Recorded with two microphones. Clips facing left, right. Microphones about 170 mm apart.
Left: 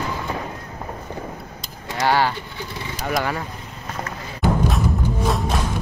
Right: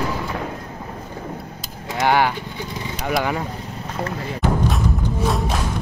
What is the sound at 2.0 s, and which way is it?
Speech, 15° right (ahead or behind).